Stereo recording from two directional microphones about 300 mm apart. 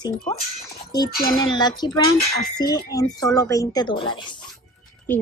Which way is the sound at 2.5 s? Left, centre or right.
Centre.